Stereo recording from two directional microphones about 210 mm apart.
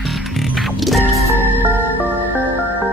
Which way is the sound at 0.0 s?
Centre (ahead or behind).